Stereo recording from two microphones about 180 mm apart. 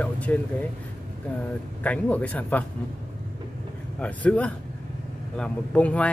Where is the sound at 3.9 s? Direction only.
10° left (ahead or behind).